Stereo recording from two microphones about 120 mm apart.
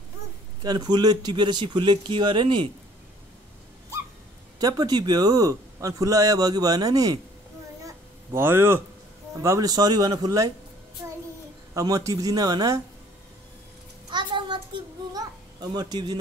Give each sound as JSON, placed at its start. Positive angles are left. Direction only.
{"t": 0.6, "sound": "a man's voice", "side_deg": -35}
{"t": 4.6, "sound": "a man's voice", "side_deg": -35}
{"t": 7.8, "sound": "cat", "side_deg": -25}
{"t": 9.4, "sound": "a man's voice", "side_deg": -30}
{"t": 11.7, "sound": "a man's voice", "side_deg": -30}
{"t": 14.1, "sound": "a sound", "side_deg": -40}